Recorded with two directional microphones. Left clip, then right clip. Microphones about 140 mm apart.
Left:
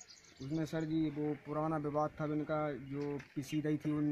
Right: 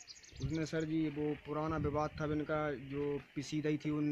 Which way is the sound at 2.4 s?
45° right (ahead or behind).